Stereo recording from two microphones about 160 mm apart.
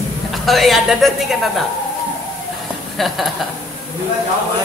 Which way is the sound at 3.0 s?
Centre (ahead or behind).